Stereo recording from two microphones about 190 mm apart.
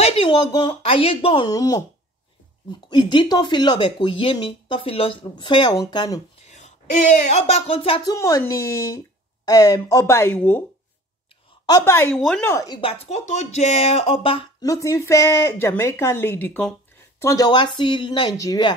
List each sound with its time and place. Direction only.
0.0 s speech: 30° left (ahead or behind)
6.4 s speech: 35° left (ahead or behind); by 10.6 s 10° left (ahead or behind)
11.6 s speech: 20° left (ahead or behind)